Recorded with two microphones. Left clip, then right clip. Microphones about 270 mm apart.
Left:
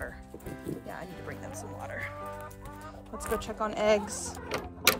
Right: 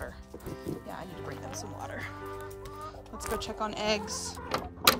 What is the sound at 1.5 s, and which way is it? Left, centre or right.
Speech, centre.